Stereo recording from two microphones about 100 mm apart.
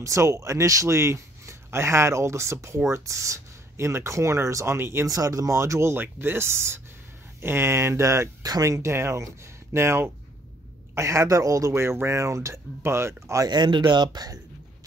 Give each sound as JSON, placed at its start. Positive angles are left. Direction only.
{"t": 0.0, "sound": "speech", "side_deg": -30}
{"t": 13.5, "sound": "speech", "side_deg": -45}